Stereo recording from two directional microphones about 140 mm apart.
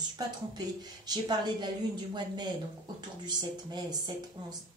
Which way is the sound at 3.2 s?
30° right (ahead or behind).